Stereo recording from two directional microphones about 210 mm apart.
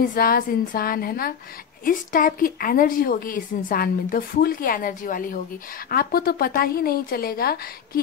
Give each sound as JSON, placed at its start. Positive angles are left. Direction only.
{"t": 0.0, "sound": "a woman's voice", "side_deg": 45}